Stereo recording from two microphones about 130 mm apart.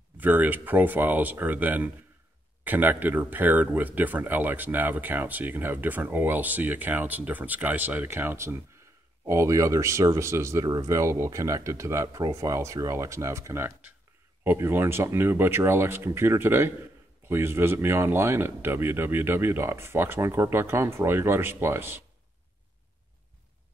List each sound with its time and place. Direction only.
0.2 s speech: 15° right (ahead or behind)